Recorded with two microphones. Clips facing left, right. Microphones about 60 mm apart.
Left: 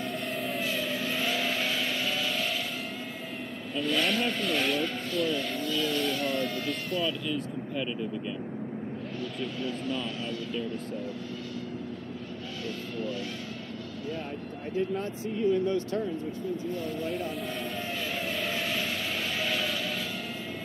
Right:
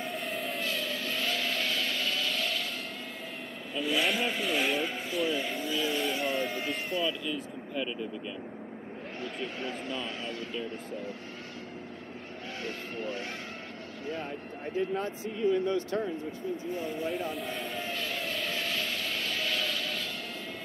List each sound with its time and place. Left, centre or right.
0.0 s vehicle: centre
3.7 s speech: centre
9.2 s speech: right
12.6 s speech: right
15.5 s speech: right
17.1 s vehicle: centre